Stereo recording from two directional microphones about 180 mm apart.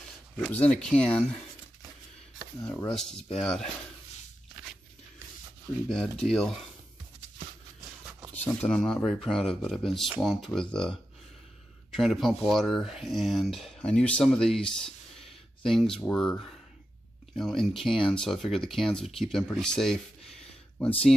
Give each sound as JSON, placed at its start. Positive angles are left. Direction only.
{"t": 0.4, "sound": "speech", "side_deg": 5}
{"t": 2.6, "sound": "speech", "side_deg": 5}
{"t": 5.9, "sound": "speech", "side_deg": 0}
{"t": 8.3, "sound": "speech", "side_deg": 5}